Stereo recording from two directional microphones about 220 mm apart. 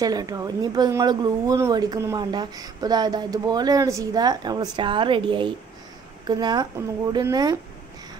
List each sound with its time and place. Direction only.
0.0 s speech: 15° right (ahead or behind)